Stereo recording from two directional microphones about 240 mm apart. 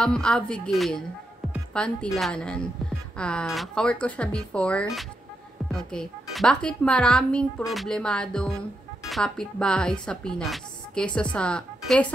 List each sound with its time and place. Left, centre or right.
0.0 s a woman's voice: centre